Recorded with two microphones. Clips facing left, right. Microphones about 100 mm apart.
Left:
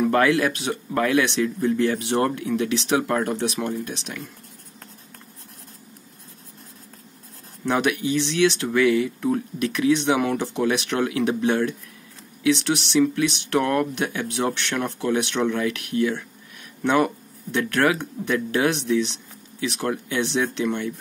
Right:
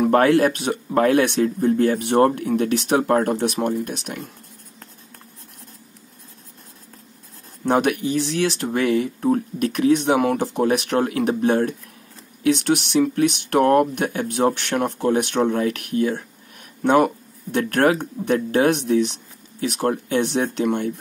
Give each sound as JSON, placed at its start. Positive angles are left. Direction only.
{"t": 0.1, "sound": "speech", "side_deg": -45}
{"t": 7.6, "sound": "speech", "side_deg": -45}